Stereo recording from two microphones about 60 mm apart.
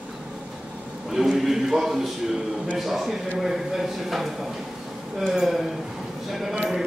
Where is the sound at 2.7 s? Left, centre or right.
Centre.